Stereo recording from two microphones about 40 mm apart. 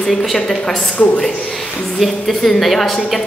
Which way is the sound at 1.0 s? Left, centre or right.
Left.